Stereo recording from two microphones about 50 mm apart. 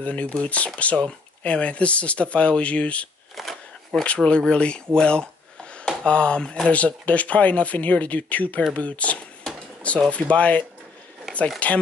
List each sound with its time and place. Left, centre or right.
0.0 s speech: left
3.3 s shuffling cards: centre
4.0 s speech: left
4.9 s a sound: centre
6.0 s speech: left
11.6 s speech: left